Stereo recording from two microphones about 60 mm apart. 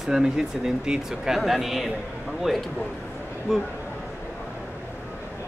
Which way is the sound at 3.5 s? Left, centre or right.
Centre.